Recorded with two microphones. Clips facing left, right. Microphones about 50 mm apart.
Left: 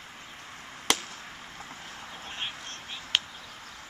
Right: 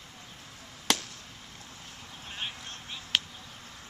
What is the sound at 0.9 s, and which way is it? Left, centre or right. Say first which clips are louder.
Chop: left 1 dB; centre.